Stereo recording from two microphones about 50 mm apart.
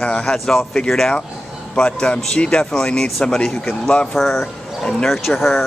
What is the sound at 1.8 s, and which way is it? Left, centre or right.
Speech, centre.